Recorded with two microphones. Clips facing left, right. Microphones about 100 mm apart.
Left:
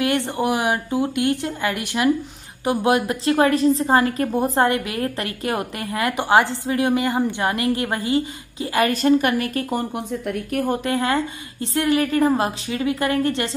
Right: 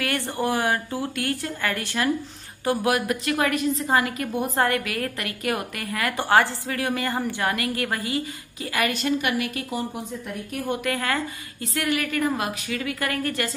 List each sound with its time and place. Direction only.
0.0 s a woman's voice: 20° left (ahead or behind)
8.7 s a woman's voice: 35° left (ahead or behind); by 10.7 s 60° left (ahead or behind)
10.7 s a woman's voice: 25° left (ahead or behind)